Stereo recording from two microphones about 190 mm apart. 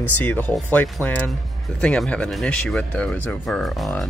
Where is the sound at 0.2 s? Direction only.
10° left (ahead or behind).